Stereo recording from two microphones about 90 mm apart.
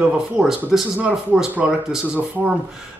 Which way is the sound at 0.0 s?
5° right (ahead or behind).